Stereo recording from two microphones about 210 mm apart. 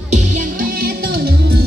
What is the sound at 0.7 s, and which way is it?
Music, 45° right (ahead or behind).